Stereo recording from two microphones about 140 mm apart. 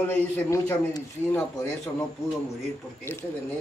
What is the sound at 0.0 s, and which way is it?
A man's voice, 15° left (ahead or behind).